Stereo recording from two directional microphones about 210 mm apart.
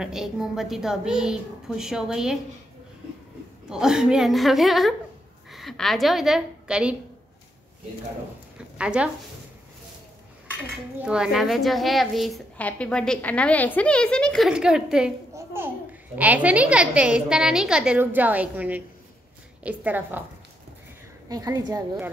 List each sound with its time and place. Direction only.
0.0 s a woman's voice: centre (ahead or behind)
3.6 s a woman's voice: 5° right (ahead or behind)
8.5 s speech: 5° right (ahead or behind)
11.0 s a woman's voice: 5° right (ahead or behind)
15.3 s babbling: 10° right (ahead or behind)
16.2 s a woman's voice: 5° right (ahead or behind)
21.3 s a woman's voice: 15° right (ahead or behind)